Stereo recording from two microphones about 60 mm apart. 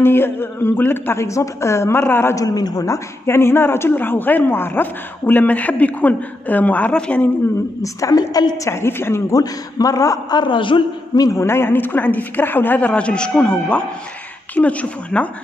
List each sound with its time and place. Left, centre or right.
0.0 s speech: left
1.2 s a woman's voice: left
2.3 s a woman's voice: left
3.3 s a man's voice: left; by 7.2 s centre
7.8 s a woman's voice: left
8.6 s a woman's voice: left
9.3 s a man's voice: left
11.3 s a man's voice: left